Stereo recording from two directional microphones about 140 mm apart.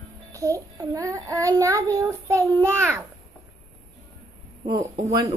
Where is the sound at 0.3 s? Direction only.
25° right (ahead or behind).